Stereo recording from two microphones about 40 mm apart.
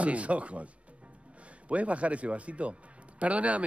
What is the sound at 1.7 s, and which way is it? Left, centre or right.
Speech, right.